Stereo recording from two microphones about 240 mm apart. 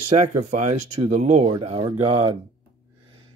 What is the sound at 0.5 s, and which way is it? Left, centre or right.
Speech, right.